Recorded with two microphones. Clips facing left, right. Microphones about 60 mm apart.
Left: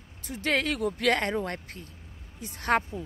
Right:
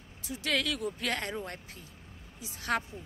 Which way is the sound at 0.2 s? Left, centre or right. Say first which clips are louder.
Left 4 dB; left.